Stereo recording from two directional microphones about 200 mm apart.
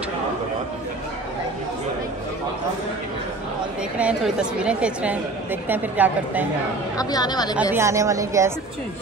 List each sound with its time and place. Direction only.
4.0 s a woman's voice: 5° right (ahead or behind)
7.0 s speech: 20° left (ahead or behind)
7.7 s a woman's voice: 15° right (ahead or behind)